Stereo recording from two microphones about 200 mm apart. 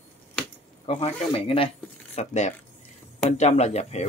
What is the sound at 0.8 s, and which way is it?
Speech, 30° left (ahead or behind).